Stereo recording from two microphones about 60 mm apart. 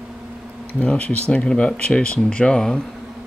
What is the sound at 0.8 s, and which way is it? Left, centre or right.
Speech, centre.